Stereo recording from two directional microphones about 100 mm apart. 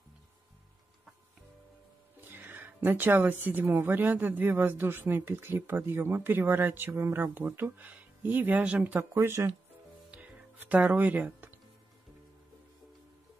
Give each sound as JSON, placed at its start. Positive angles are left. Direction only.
{"t": 2.3, "sound": "a woman's voice", "side_deg": -20}
{"t": 9.1, "sound": "a woman's voice", "side_deg": -25}
{"t": 10.1, "sound": "music", "side_deg": -15}